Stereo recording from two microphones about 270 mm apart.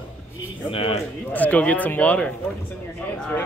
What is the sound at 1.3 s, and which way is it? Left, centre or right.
Speech, centre.